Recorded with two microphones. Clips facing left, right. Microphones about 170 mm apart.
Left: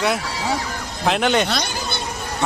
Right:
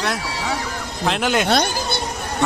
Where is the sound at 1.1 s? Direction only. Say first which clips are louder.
Left 2 dB; 5° right (ahead or behind).